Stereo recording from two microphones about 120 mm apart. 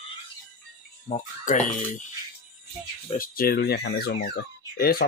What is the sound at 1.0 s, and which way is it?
Speech, 90° left.